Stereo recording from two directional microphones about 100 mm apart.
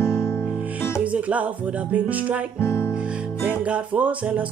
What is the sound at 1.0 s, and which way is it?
Music, 15° right (ahead or behind).